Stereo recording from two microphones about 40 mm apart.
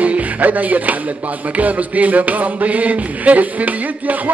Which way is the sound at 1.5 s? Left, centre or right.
Right.